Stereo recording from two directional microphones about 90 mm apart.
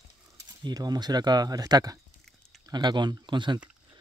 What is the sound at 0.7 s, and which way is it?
Speech, 50° right (ahead or behind).